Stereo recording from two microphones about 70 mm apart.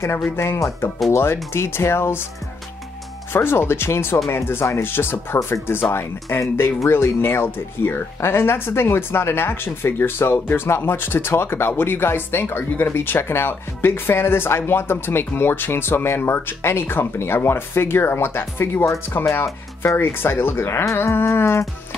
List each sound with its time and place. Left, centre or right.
0.6 s speech: left
3.3 s speech: left
19.1 s speech: left
20.0 s speech: left